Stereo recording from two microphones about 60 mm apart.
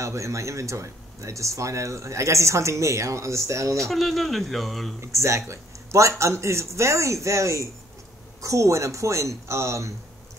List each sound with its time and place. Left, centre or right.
0.0 s speech: right
3.7 s speech: centre
5.0 s speech: right